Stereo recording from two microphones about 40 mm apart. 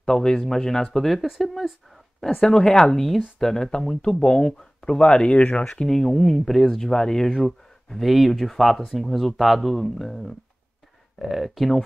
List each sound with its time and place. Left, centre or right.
0.0 s speech: centre
2.4 s speech: centre
5.9 s speech: centre
7.3 s speech: centre
11.1 s speech: centre